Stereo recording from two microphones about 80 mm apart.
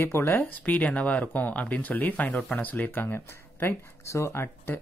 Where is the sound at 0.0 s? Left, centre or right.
Left.